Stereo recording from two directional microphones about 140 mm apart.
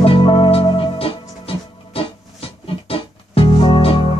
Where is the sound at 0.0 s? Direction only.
40° left (ahead or behind).